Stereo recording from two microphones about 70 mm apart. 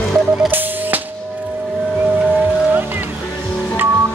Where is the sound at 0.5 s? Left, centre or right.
Right.